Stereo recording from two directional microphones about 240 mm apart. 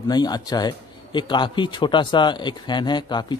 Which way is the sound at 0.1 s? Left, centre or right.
Centre.